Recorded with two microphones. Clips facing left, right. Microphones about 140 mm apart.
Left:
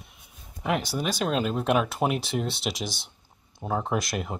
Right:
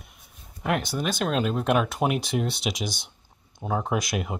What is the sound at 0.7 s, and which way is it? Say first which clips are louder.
Speech: right 1 dB; centre (ahead or behind).